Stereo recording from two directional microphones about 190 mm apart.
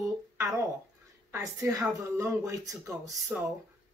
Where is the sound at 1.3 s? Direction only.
15° right (ahead or behind).